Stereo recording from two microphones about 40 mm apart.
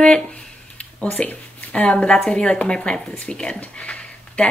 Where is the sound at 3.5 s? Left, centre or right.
Left.